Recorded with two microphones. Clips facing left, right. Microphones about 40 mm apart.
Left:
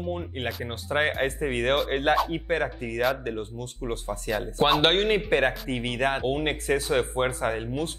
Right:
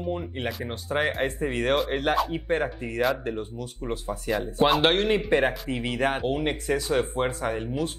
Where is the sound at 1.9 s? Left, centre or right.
Left.